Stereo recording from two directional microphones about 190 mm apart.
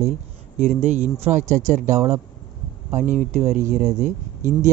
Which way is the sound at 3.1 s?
40° right (ahead or behind).